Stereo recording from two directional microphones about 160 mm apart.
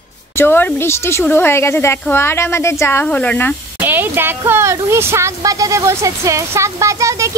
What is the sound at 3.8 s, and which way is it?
Speech, 10° right (ahead or behind).